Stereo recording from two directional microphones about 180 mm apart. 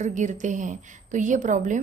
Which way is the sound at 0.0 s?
40° right (ahead or behind).